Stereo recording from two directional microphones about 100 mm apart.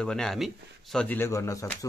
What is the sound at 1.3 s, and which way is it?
Speech, 30° left (ahead or behind).